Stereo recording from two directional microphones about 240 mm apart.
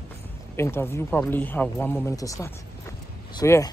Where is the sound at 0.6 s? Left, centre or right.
Centre.